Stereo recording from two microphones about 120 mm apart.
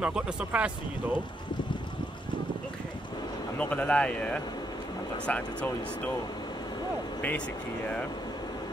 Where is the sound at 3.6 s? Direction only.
10° left (ahead or behind).